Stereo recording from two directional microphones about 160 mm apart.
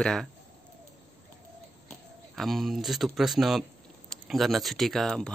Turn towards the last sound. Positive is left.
turn(degrees=0)  # may be behind; listen again after turning